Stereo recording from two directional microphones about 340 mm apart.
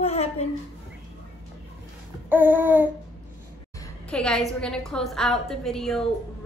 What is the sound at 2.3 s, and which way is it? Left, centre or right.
Speech, centre.